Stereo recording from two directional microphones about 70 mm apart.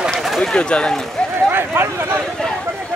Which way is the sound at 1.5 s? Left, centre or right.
Right.